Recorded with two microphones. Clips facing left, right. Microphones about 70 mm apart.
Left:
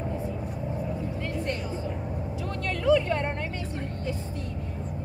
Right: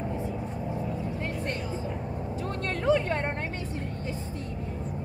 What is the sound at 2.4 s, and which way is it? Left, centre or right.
Vehicle, right.